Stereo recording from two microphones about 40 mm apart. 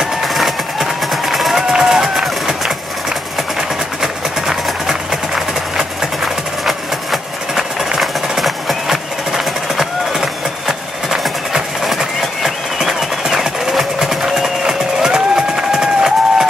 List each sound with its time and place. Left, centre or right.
0.3 s music: centre
1.7 s a sound: centre
4.8 s engine: centre
11.1 s music: centre
12.4 s sewing machine: centre